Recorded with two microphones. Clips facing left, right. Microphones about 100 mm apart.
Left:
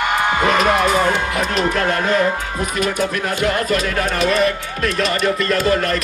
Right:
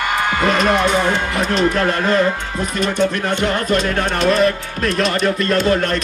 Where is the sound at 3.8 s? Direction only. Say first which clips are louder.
Right 1 dB; 30° right (ahead or behind).